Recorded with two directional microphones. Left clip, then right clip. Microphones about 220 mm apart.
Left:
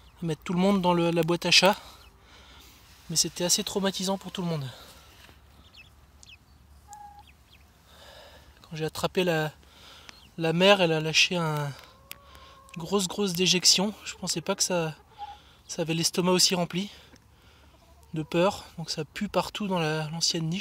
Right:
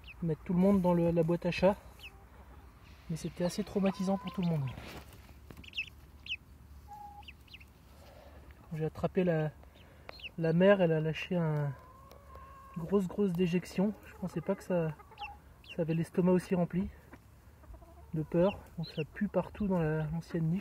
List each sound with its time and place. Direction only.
0.3 s speech: 25° left (ahead or behind)
3.2 s speech: 20° left (ahead or behind)
8.7 s speech: 20° left (ahead or behind)
12.7 s speech: 15° left (ahead or behind)
18.1 s speech: 15° left (ahead or behind)